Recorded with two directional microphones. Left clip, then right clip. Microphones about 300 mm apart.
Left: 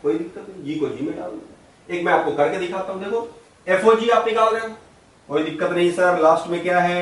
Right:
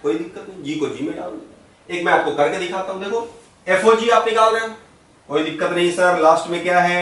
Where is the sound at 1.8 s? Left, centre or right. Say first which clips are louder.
Right 2 dB; centre.